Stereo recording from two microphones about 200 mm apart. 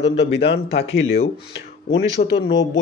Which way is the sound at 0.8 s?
75° left (ahead or behind).